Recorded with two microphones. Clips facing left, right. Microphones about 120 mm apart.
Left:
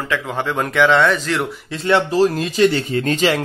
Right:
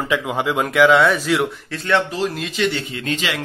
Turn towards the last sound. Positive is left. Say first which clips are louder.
# left 7 dB
turn(degrees=40)  # may be behind; listen again after turning